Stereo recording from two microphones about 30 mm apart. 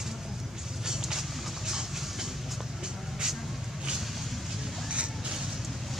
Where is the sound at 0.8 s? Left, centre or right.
Centre.